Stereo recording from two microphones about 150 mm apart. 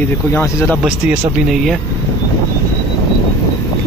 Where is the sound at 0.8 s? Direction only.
5° right (ahead or behind).